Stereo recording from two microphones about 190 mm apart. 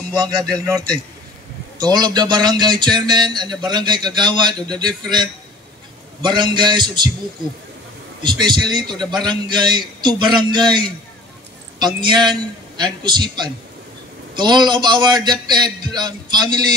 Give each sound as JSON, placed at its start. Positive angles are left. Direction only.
{"t": 0.2, "sound": "a man's voice", "side_deg": -20}
{"t": 8.2, "sound": "a man's voice", "side_deg": -25}
{"t": 11.8, "sound": "a man's voice", "side_deg": -25}